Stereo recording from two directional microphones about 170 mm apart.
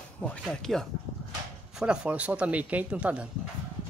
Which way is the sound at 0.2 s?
5° left (ahead or behind).